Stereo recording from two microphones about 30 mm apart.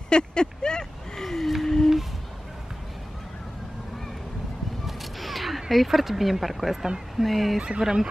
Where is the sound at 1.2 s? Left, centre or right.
Centre.